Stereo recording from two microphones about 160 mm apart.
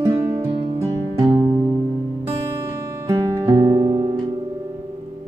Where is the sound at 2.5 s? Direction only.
20° right (ahead or behind).